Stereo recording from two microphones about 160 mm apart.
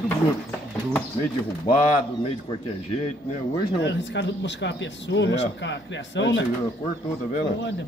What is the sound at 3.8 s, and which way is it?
Speech, 90° left.